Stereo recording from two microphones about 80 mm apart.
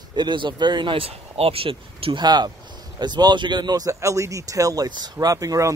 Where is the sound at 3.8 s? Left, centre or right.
Right.